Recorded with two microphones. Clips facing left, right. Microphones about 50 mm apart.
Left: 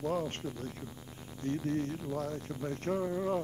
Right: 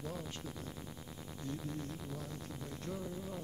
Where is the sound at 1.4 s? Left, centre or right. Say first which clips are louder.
Left 10 dB; left.